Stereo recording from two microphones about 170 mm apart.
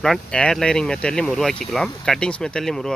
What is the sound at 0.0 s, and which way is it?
Speech, 5° left (ahead or behind).